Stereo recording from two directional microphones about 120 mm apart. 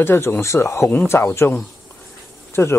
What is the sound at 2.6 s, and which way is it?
Speech, 25° left (ahead or behind).